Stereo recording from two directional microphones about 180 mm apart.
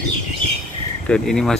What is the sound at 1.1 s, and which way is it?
Speech, 5° left (ahead or behind).